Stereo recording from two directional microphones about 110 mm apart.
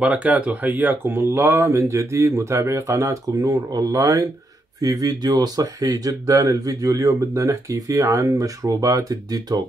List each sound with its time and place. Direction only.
0.0 s speech: 10° right (ahead or behind); by 9.6 s 35° right (ahead or behind)